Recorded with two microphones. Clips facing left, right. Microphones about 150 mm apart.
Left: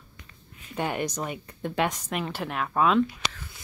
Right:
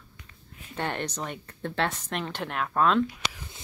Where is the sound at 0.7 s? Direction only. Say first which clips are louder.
Left 3 dB; 10° left (ahead or behind).